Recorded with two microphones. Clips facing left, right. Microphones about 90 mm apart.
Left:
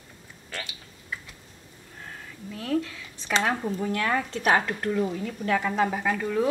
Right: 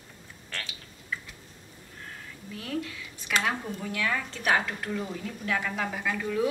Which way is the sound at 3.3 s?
35° left (ahead or behind).